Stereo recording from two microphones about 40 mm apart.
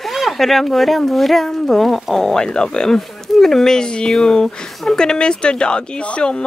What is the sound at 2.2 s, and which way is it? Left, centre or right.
A woman's voice, centre.